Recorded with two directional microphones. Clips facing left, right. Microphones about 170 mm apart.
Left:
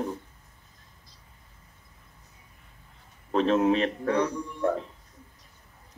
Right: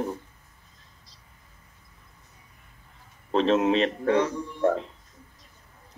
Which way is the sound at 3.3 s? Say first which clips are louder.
Right 1 dB; 25° right (ahead or behind).